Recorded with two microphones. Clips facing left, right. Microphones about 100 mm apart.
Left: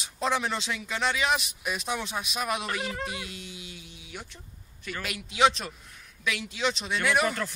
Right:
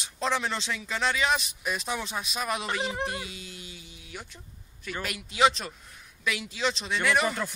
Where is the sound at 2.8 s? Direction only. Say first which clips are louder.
Right 3 dB; 20° right (ahead or behind).